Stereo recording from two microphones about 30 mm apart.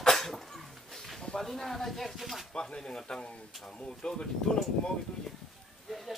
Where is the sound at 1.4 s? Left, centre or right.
Centre.